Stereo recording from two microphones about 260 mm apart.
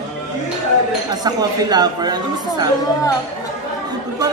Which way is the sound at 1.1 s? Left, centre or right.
Centre.